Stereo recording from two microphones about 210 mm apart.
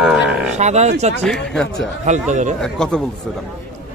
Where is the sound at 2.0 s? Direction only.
35° right (ahead or behind).